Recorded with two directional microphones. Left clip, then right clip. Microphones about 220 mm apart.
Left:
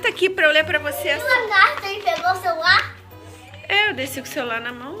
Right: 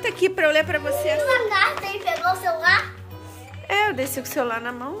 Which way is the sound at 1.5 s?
10° left (ahead or behind).